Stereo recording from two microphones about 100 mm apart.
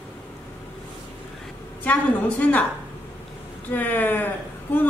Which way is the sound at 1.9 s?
15° left (ahead or behind).